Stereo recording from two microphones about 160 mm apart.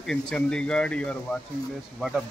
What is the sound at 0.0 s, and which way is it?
Speech, 5° left (ahead or behind).